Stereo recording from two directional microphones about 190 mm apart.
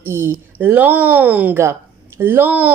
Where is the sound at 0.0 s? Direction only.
15° right (ahead or behind).